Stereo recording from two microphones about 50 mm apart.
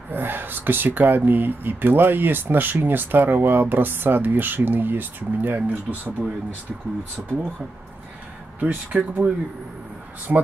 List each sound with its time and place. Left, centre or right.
0.1 s speech: right
7.2 s speech: right
8.5 s speech: right
10.3 s speech: centre